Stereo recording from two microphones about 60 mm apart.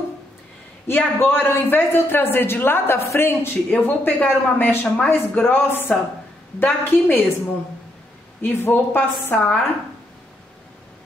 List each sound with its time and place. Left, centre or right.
0.8 s a man's voice: left
3.7 s a man's voice: left
4.8 s speech: centre
5.5 s a man's voice: left
8.4 s a man's voice: left